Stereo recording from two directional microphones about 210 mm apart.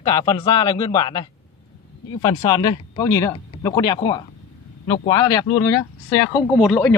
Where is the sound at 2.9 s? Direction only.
15° left (ahead or behind).